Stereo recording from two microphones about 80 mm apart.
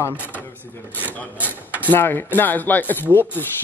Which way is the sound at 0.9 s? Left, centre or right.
Right.